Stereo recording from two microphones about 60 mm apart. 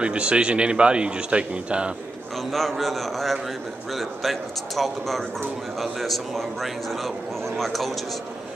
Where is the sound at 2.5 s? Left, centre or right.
Centre.